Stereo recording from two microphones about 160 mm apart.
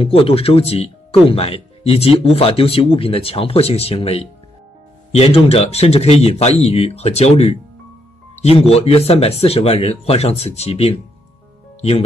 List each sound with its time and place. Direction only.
0.0 s speech: 35° left (ahead or behind)